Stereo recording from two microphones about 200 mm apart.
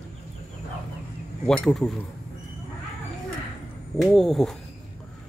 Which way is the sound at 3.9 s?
Centre (ahead or behind).